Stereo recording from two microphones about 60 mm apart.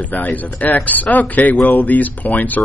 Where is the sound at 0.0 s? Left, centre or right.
Left.